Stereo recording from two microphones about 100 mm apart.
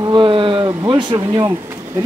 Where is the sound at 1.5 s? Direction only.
25° right (ahead or behind).